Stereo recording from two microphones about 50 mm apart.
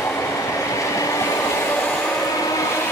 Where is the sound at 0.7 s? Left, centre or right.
Left.